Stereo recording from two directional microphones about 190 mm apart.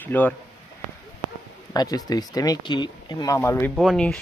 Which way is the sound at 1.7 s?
20° left (ahead or behind).